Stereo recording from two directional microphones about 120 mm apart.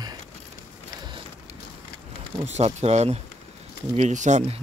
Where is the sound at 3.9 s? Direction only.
80° right.